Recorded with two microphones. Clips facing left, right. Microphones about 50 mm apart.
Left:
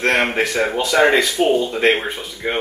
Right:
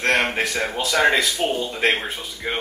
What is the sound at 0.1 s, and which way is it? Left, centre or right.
Speech, centre.